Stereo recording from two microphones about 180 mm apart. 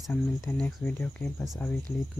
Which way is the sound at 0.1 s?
5° left (ahead or behind).